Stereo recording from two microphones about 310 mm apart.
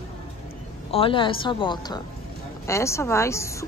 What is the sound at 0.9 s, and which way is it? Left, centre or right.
Speech, centre.